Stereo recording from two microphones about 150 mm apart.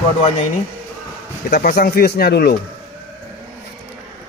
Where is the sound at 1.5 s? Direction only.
90° left.